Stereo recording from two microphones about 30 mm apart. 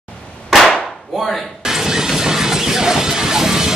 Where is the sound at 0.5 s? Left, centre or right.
Centre.